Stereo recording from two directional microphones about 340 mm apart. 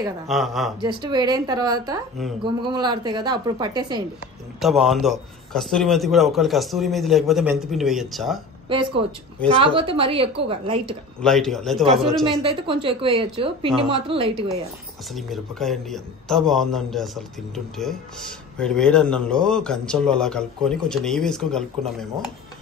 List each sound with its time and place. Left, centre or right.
0.3 s speech: centre
0.8 s a woman's voice: centre
4.6 s speech: centre
8.6 s a woman's voice: centre
11.1 s speech: centre
12.4 s a woman's voice: centre
15.1 s speech: centre